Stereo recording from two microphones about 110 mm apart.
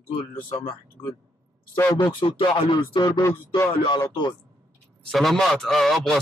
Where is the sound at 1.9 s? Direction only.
45° left (ahead or behind).